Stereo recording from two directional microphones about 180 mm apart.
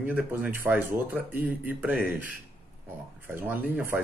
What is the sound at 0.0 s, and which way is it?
Speech, 10° right (ahead or behind).